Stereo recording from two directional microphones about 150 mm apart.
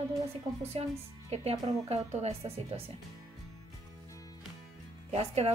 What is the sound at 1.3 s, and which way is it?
Speech, 45° right (ahead or behind).